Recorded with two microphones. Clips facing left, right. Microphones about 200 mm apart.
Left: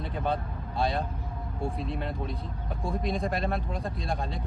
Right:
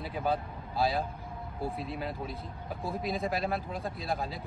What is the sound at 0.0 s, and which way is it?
Speech, 5° right (ahead or behind).